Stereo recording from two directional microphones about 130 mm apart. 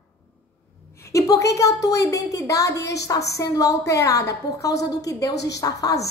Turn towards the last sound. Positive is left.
turn(degrees=25)  # may be behind; listen again after turning